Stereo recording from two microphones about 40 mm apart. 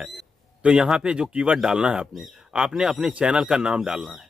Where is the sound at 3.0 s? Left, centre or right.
Right.